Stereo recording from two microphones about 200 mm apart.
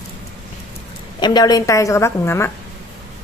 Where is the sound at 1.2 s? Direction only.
20° left (ahead or behind).